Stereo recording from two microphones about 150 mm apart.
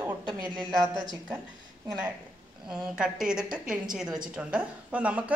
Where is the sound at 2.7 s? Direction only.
5° right (ahead or behind).